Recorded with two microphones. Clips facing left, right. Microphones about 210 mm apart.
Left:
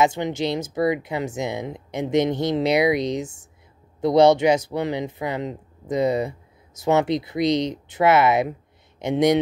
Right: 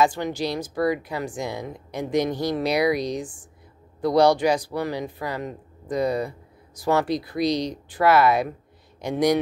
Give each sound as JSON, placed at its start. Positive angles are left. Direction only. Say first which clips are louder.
{"t": 0.0, "sound": "speech", "louder": "left 1 dB", "side_deg": 20}